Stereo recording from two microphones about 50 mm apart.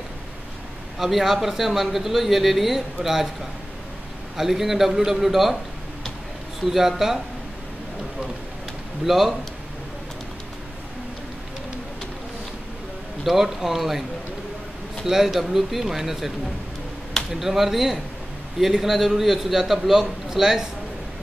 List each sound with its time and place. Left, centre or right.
0.9 s speech: centre
4.4 s a man's voice: centre
6.7 s a man's voice: centre
9.0 s speech: centre
13.2 s speech: centre
15.0 s a man's voice: centre